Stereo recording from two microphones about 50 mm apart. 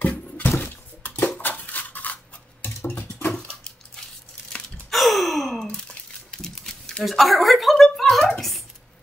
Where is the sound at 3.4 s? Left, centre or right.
Centre.